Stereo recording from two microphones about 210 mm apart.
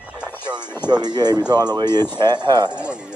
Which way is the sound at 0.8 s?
20° right (ahead or behind).